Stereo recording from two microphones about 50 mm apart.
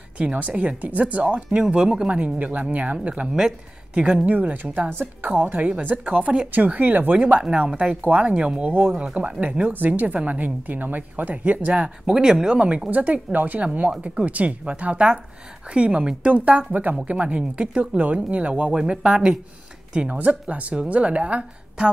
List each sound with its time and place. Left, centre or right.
0.2 s speech: right
1.6 s speech: centre
3.0 s speech: right
4.3 s speech: right
7.3 s speech: centre
12.1 s speech: centre
12.9 s speech: right
18.5 s speech: centre